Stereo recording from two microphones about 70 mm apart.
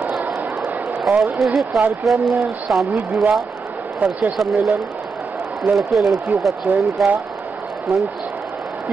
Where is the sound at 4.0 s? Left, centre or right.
Right.